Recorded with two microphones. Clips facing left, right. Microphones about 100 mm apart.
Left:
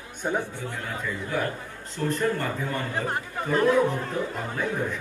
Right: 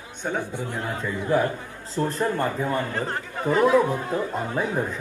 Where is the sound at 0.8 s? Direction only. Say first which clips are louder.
Right 2 dB; 30° right (ahead or behind).